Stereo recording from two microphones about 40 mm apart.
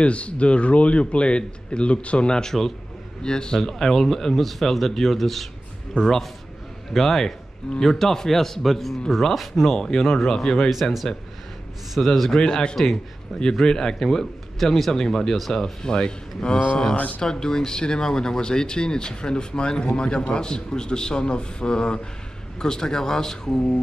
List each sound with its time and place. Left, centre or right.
0.0 s speech: left; by 9.8 s centre
9.8 s speech: centre
10.7 s speech: centre
12.3 s speech: centre
16.9 s speech: left
17.2 s speech: centre